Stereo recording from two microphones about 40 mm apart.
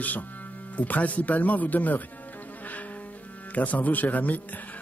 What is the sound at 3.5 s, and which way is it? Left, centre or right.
Speech, left.